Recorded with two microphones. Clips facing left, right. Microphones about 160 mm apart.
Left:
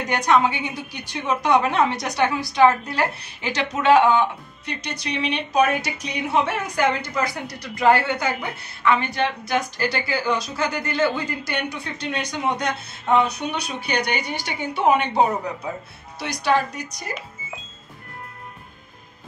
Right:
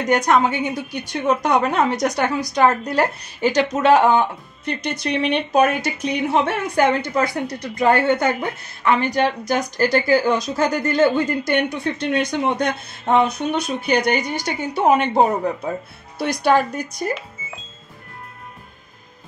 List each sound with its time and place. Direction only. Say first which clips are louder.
0.1 s a woman's voice: right 2 dB; 45° right (ahead or behind)